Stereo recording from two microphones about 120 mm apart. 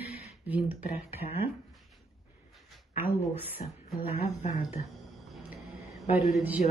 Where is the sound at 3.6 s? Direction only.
60° left (ahead or behind).